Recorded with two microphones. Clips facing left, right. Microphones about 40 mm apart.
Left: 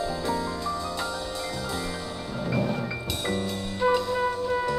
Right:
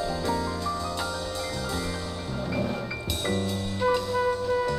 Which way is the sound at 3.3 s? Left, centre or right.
Centre.